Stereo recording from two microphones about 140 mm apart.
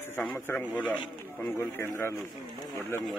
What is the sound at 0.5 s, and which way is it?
A man's voice, 10° left (ahead or behind).